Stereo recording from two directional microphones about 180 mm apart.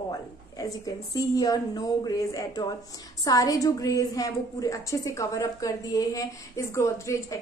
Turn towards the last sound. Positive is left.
turn(degrees=15)  # may be behind; listen again after turning